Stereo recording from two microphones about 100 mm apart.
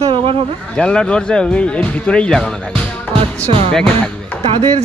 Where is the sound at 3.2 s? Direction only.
70° right (ahead or behind).